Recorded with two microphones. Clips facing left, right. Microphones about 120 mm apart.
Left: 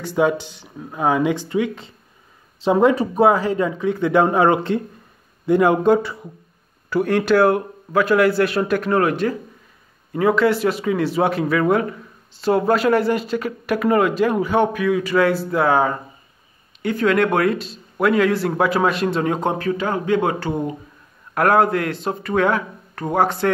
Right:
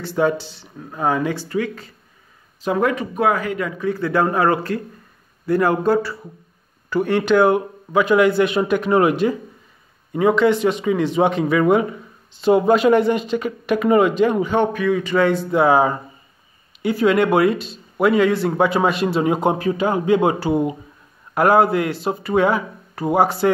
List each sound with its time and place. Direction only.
0.0 s a man's voice: 10° left (ahead or behind); by 9.1 s 10° right (ahead or behind)
10.1 s a man's voice: centre (ahead or behind)
15.7 s a man's voice: 10° right (ahead or behind)